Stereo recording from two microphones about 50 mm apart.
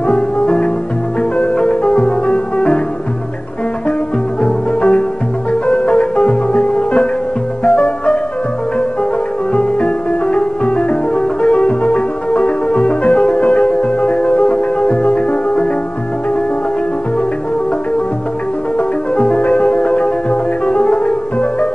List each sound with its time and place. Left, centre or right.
0.1 s music: left
4.4 s music: left
9.5 s music: left
18.8 s music: left